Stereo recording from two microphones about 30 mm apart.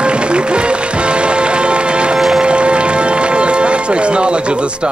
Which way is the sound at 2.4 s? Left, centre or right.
Right.